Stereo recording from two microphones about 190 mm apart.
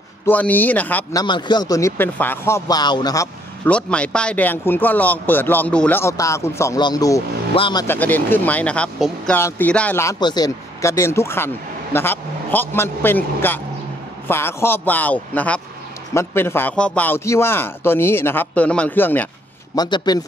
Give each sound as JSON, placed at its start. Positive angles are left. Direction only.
{"t": 0.3, "sound": "speech", "side_deg": 10}
{"t": 1.2, "sound": "speech", "side_deg": 25}
{"t": 3.6, "sound": "speech", "side_deg": 5}
{"t": 7.8, "sound": "speech", "side_deg": 10}
{"t": 19.7, "sound": "speech", "side_deg": 20}